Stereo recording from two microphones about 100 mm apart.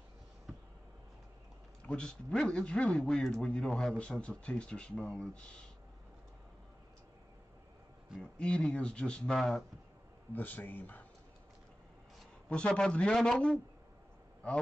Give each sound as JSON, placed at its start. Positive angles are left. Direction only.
{"t": 1.9, "sound": "a man's voice", "side_deg": 10}
{"t": 8.2, "sound": "a man's voice", "side_deg": 10}
{"t": 10.3, "sound": "a man's voice", "side_deg": 20}
{"t": 12.4, "sound": "a man's voice", "side_deg": 10}